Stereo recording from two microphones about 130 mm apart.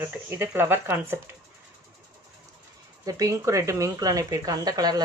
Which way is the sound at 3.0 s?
25° right (ahead or behind).